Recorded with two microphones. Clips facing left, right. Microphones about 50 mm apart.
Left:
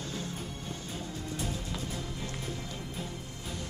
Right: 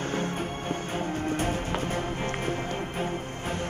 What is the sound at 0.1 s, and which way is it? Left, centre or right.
Music, right.